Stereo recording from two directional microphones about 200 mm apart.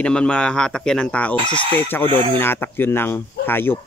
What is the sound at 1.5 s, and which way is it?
Speech, 30° right (ahead or behind).